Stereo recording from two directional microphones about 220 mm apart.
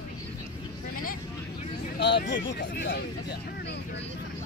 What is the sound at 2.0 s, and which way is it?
Speech, 50° left (ahead or behind).